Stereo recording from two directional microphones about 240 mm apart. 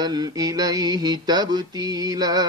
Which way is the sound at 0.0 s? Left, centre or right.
Centre.